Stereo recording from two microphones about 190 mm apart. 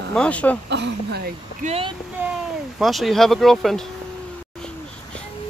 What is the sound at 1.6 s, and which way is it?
Speech, 30° right (ahead or behind).